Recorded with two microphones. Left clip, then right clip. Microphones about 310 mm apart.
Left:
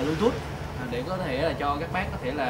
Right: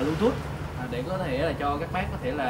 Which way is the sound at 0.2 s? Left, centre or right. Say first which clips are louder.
Even; centre.